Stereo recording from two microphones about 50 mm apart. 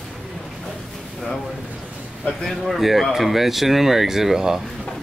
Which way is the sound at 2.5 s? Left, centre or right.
Centre.